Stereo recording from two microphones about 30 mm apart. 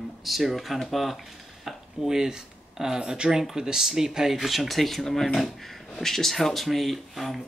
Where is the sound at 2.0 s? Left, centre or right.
Centre.